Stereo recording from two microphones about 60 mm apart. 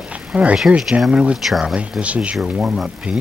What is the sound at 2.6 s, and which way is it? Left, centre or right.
Speech, centre.